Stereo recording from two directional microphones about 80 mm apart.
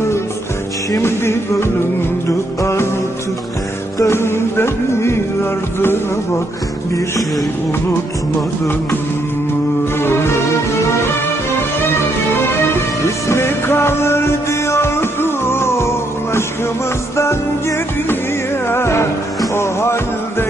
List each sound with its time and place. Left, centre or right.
0.9 s music: left
4.0 s music: left
9.9 s music: left
13.3 s music: left
17.2 s music: left